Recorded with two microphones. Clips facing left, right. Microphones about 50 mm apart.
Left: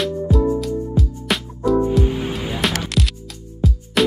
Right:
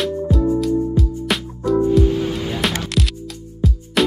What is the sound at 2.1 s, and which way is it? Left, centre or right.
Music, centre.